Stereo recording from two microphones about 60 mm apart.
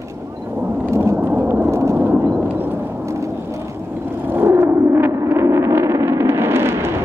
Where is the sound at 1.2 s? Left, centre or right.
Right.